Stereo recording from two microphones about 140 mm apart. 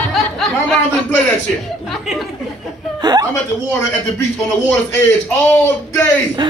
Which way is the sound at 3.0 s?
30° right (ahead or behind).